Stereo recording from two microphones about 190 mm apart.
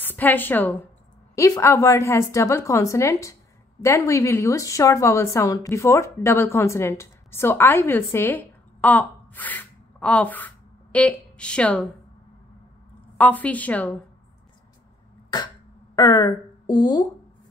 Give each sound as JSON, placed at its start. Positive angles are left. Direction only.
{"t": 0.0, "sound": "a woman's voice", "side_deg": 10}
{"t": 13.2, "sound": "a woman's voice", "side_deg": 10}
{"t": 16.0, "sound": "speech", "side_deg": 20}